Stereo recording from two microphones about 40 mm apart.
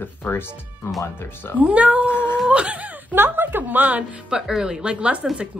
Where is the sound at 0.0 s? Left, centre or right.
Left.